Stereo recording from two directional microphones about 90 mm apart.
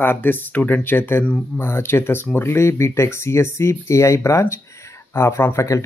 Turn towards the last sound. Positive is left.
turn(degrees=35)  # may be behind; listen again after turning